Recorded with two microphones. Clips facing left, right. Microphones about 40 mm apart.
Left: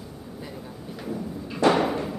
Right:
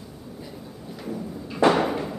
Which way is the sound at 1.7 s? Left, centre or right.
Centre.